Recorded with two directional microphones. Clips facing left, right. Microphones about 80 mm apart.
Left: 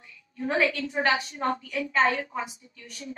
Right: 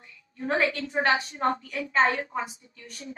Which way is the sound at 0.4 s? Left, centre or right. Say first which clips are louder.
Left 1 dB; right.